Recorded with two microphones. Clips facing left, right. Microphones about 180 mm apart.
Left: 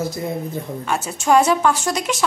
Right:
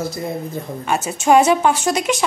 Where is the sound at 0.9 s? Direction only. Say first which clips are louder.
Right 3 dB; 15° right (ahead or behind).